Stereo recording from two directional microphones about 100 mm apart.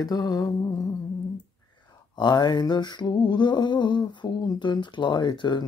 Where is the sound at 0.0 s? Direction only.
40° left (ahead or behind).